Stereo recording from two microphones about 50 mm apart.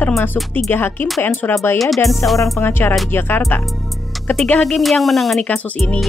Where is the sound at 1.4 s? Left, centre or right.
Left.